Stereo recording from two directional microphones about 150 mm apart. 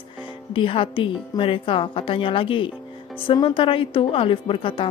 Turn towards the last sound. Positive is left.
turn(degrees=35)  # may be behind; listen again after turning